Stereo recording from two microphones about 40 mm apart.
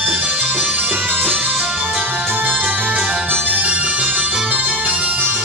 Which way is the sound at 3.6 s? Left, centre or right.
Right.